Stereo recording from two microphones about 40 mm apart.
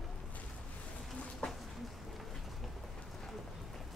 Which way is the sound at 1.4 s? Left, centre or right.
Left.